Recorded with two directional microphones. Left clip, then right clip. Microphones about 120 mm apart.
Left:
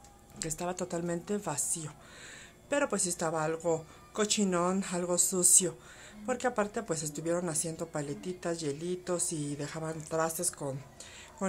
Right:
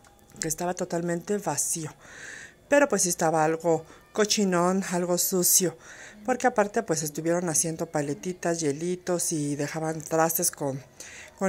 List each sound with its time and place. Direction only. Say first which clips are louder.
0.4 s a woman's voice: right 6 dB; 40° right (ahead or behind)